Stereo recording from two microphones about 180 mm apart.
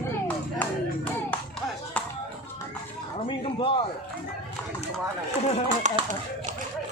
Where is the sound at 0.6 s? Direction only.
10° left (ahead or behind).